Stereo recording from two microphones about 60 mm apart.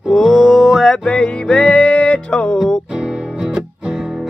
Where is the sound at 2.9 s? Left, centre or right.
Centre.